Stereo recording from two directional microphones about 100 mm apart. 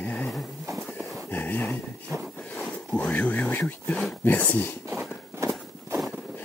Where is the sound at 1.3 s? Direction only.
20° left (ahead or behind).